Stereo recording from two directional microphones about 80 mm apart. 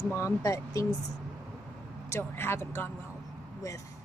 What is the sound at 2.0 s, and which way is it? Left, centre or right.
Speech, left.